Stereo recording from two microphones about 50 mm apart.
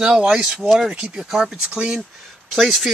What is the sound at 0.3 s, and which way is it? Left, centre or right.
Speech, centre.